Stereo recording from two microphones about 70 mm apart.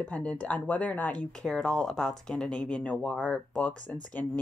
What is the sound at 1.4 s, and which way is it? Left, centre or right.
Speech, centre.